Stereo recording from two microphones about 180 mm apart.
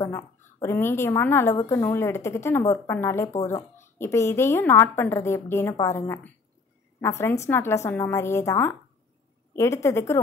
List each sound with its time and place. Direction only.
0.0 s a woman's voice: 15° left (ahead or behind)